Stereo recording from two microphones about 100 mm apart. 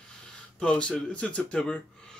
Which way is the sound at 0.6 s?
10° left (ahead or behind).